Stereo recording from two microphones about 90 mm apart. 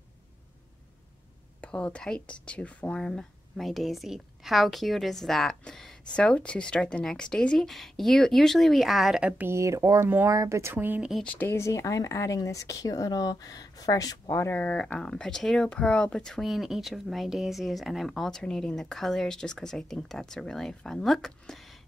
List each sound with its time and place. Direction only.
1.6 s speech: 10° left (ahead or behind); by 9.3 s 5° right (ahead or behind)
9.4 s speech: 30° right (ahead or behind)
10.0 s speech: 20° right (ahead or behind)
10.3 s speech: 35° right (ahead or behind)
11.0 s speech: 5° right (ahead or behind)
11.2 s speech: 20° left (ahead or behind); by 14.3 s 45° left (ahead or behind)
14.3 s speech: 25° left (ahead or behind); by 16.4 s 10° left (ahead or behind)
16.4 s speech: 5° right (ahead or behind)